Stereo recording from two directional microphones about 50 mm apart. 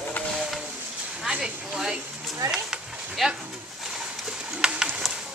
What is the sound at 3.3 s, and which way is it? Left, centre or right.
Speech, centre.